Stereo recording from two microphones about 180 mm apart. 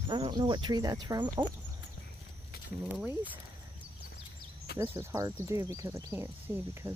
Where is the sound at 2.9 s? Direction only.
10° right (ahead or behind).